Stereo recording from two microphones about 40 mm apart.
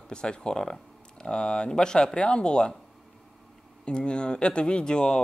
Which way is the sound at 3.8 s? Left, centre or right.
Left.